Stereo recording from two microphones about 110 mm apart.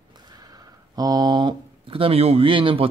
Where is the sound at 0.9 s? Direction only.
40° right (ahead or behind).